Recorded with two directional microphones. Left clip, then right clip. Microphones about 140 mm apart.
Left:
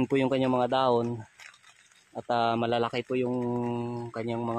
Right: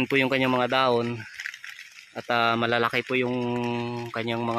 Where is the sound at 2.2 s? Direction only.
5° left (ahead or behind).